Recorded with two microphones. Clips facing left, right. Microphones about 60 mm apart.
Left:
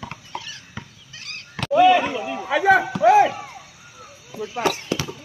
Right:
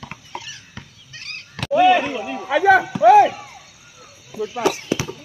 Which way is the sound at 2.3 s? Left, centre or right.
Centre.